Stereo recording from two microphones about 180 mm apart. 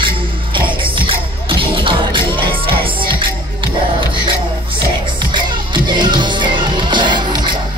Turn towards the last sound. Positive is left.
turn(degrees=-25)  # may be behind; listen again after turning